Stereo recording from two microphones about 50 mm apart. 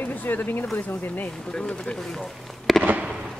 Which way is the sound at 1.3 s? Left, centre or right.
Centre.